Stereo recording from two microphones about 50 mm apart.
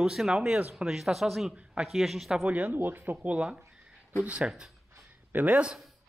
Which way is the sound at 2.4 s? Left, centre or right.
Right.